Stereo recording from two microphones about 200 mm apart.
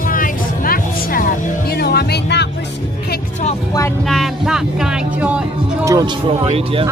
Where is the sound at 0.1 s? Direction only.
45° left (ahead or behind).